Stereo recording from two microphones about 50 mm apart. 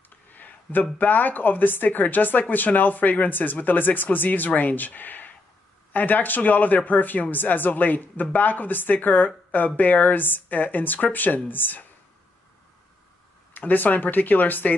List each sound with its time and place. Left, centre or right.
0.3 s speech: left
13.5 s speech: left